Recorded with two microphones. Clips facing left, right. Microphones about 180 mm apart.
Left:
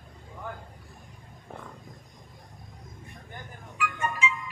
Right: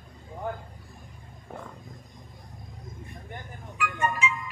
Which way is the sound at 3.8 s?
55° right (ahead or behind).